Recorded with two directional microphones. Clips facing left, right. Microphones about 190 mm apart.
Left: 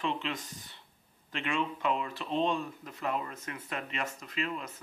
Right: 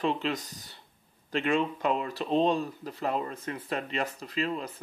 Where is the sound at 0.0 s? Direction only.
40° right (ahead or behind).